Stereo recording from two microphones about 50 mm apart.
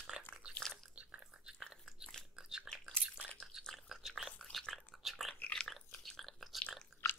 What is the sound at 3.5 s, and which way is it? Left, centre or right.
Biting, centre.